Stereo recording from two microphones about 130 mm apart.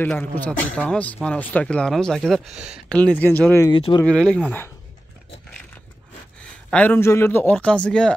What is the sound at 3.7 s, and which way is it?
Speech, 40° left (ahead or behind).